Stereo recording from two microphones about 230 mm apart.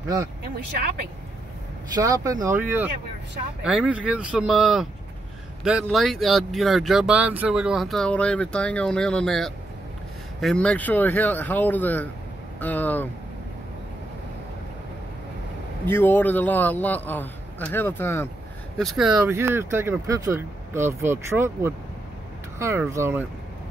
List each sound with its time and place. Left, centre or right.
2.0 s a man's voice: centre
15.8 s a man's voice: centre
18.8 s speech: centre